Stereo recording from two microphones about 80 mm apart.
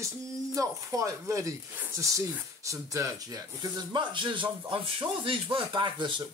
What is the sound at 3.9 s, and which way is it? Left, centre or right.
Speech, right.